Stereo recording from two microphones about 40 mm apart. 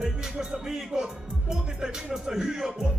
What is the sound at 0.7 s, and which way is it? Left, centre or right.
Music, centre.